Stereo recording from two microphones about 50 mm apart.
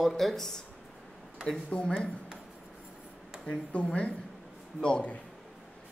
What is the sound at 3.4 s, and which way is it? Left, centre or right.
Speech, left.